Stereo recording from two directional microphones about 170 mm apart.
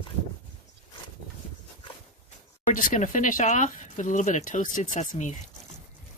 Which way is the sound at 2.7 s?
45° left (ahead or behind).